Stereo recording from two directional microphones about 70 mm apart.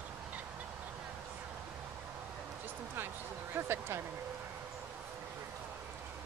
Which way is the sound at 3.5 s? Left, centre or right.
Right.